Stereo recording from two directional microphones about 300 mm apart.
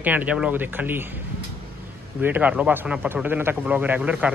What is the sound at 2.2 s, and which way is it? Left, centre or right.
A man's voice, centre.